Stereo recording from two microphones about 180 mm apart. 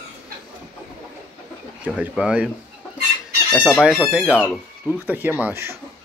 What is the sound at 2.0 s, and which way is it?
Speech, 5° right (ahead or behind).